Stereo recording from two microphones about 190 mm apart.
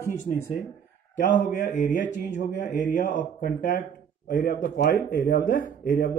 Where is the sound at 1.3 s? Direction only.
40° left (ahead or behind).